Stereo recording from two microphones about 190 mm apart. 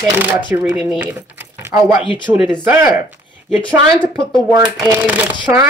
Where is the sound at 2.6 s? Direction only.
15° right (ahead or behind).